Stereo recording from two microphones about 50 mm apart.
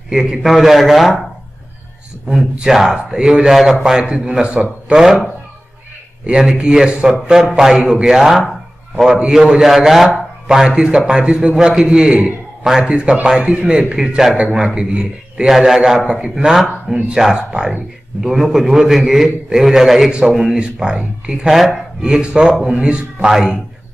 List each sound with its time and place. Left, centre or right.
0.1 s a man's voice: centre
2.2 s a man's voice: centre
3.2 s speech: right
3.4 s a man's voice: centre
5.0 s a man's voice: centre
6.4 s a man's voice: centre
13.9 s a man's voice: centre
14.8 s a man's voice: right